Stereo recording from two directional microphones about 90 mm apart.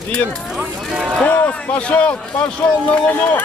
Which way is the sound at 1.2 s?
15° left (ahead or behind).